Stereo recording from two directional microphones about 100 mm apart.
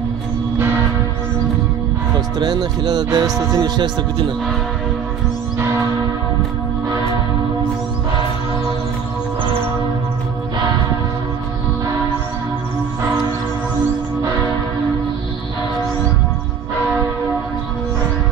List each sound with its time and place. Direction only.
2.1 s speech: 45° right (ahead or behind)